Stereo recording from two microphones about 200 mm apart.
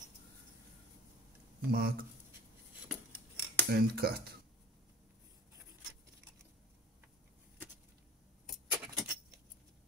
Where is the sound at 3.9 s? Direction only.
50° right (ahead or behind).